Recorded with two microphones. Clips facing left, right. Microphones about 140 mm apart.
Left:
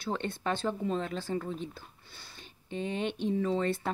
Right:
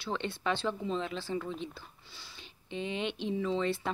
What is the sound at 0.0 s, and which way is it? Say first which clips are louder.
A woman's voice: left 1 dB; 45° left (ahead or behind).